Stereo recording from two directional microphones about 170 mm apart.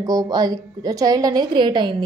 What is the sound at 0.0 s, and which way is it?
A woman's voice, 20° right (ahead or behind).